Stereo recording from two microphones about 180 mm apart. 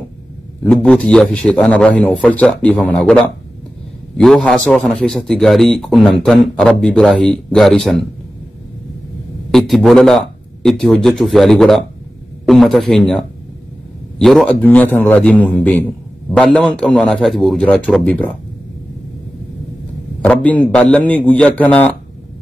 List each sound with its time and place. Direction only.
0.7 s a man's voice: 5° left (ahead or behind)
9.5 s a man's voice: centre (ahead or behind)
20.2 s a man's voice: 5° left (ahead or behind)